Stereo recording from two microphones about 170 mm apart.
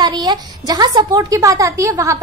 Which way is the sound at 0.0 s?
25° right (ahead or behind).